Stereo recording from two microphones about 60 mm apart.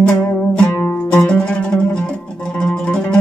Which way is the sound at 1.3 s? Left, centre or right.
Centre.